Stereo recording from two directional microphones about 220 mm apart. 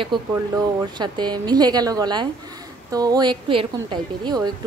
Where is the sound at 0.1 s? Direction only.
20° right (ahead or behind).